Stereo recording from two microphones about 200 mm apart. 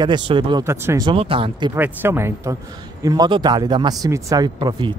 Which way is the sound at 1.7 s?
10° right (ahead or behind).